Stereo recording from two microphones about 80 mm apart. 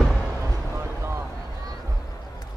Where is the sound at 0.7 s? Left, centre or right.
Right.